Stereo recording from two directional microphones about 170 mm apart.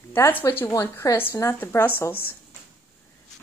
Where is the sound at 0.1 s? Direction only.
10° left (ahead or behind).